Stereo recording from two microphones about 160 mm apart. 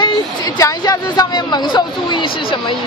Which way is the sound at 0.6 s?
25° left (ahead or behind).